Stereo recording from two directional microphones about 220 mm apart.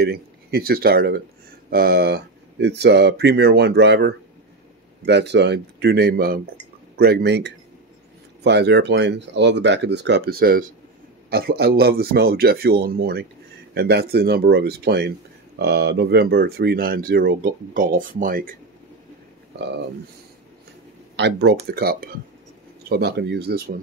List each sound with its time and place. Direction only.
0.0 s speech: 45° right (ahead or behind)
19.6 s speech: 50° right (ahead or behind)
21.2 s speech: 50° right (ahead or behind)